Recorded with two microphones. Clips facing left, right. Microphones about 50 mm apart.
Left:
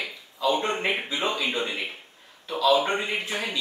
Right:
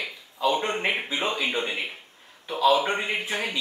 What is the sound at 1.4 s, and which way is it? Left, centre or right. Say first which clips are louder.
Speech: right 1 dB; centre.